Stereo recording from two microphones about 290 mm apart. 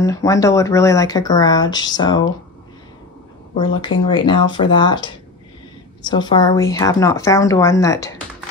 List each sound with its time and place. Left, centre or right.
0.0 s speech: centre
3.5 s speech: centre